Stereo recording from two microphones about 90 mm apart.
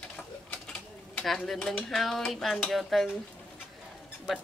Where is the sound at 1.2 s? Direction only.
5° left (ahead or behind).